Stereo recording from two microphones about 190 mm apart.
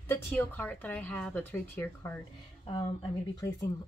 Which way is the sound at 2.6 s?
25° left (ahead or behind).